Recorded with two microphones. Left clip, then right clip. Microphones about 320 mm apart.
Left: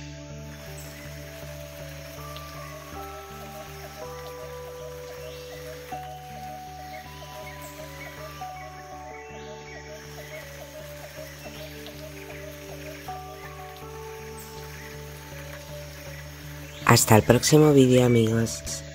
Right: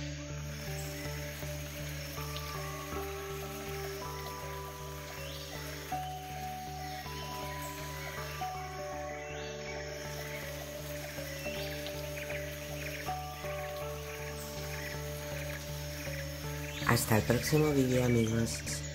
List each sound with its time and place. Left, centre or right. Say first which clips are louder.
16.8 s speech: left 12 dB; left